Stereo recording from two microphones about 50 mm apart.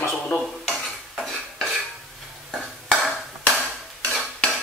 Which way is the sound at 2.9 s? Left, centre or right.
Centre.